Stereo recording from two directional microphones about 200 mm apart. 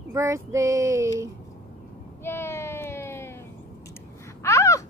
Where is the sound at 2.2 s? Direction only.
10° left (ahead or behind).